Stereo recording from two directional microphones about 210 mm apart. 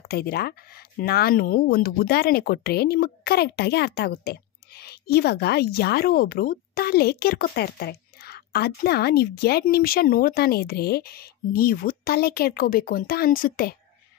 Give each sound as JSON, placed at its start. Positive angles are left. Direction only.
{"t": 0.1, "sound": "speech", "side_deg": 50}